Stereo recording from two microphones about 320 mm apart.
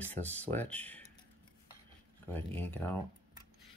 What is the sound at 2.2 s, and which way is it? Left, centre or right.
Speech, centre.